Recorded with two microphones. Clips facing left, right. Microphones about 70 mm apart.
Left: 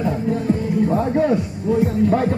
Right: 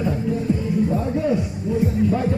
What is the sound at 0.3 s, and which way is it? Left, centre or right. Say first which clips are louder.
Music: left 3 dB; left.